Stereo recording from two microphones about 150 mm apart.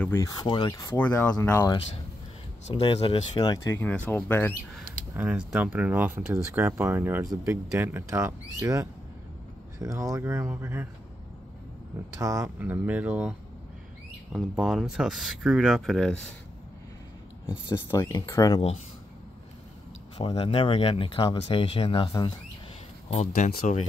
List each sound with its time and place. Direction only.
0.0 s speech: 20° left (ahead or behind)
0.4 s speech: 30° left (ahead or behind)
0.9 s speech: 10° left (ahead or behind)
2.7 s speech: 35° left (ahead or behind)
3.3 s speech: 25° left (ahead or behind)
5.1 s speech: 10° right (ahead or behind)
12.2 s speech: 20° right (ahead or behind)
14.3 s speech: centre (ahead or behind)
17.6 s speech: 20° left (ahead or behind)
20.2 s speech: 40° left (ahead or behind)
23.0 s speech: 50° left (ahead or behind)